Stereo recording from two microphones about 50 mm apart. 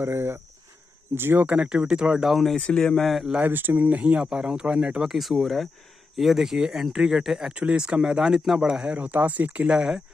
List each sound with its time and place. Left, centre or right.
0.0 s speech: right
1.6 s speech: centre
2.2 s speech: centre
2.6 s speech: centre
3.0 s speech: centre
3.3 s speech: right
4.2 s speech: centre
5.1 s speech: centre
7.5 s speech: right
8.9 s speech: right
9.7 s speech: centre